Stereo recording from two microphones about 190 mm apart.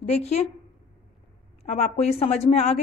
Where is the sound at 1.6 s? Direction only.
35° left (ahead or behind).